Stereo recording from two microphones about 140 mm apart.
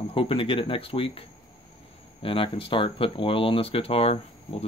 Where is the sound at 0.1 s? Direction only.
40° left (ahead or behind).